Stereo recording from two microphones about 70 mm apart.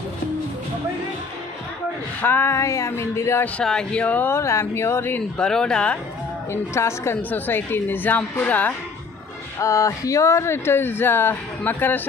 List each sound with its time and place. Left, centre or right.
2.2 s speech: left
2.5 s music: left
3.6 s speech: centre
4.0 s a woman's voice: left
4.3 s speech: left
5.4 s speech: centre
6.5 s speech: left
7.2 s a woman's voice: left
9.6 s speech: left